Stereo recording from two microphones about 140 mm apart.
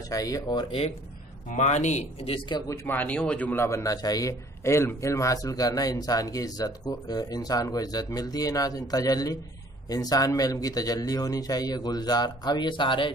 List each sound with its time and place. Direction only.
0.1 s a man's voice: 25° left (ahead or behind)
1.5 s speech: 55° left (ahead or behind)
2.7 s a man's voice: 15° left (ahead or behind); by 13.1 s 35° left (ahead or behind)